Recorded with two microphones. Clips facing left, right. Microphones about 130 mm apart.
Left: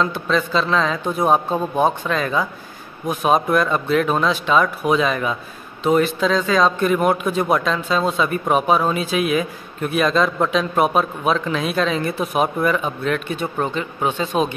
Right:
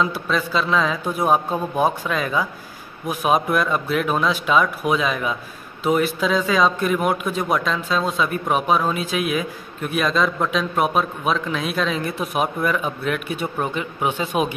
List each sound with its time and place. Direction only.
0.0 s a man's voice: 5° right (ahead or behind)